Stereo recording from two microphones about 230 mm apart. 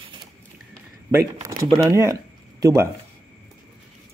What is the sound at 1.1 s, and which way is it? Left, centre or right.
Speech, centre.